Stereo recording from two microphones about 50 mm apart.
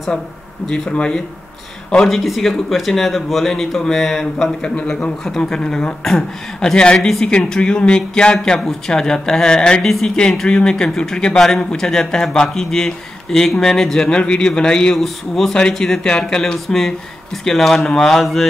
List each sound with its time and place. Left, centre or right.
0.7 s speech: centre
2.0 s speech: centre
7.2 s speech: centre
15.0 s speech: centre
15.8 s speech: centre